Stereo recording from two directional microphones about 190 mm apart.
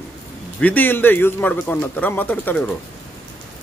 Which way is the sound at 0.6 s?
10° left (ahead or behind).